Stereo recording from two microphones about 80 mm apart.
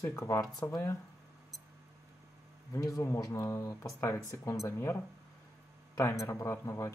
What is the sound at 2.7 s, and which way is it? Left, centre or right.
Speech, left.